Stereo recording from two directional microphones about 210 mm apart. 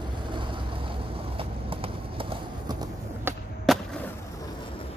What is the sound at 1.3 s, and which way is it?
Clip-clop, 25° right (ahead or behind).